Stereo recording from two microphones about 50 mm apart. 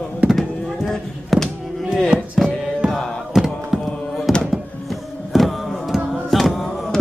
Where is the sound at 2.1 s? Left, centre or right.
Centre.